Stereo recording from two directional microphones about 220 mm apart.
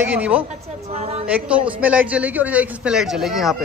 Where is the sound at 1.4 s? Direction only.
5° right (ahead or behind).